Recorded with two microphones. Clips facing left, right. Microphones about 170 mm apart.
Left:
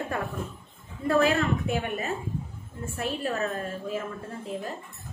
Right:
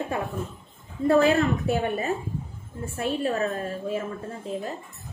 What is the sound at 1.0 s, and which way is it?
A woman's voice, 30° right (ahead or behind).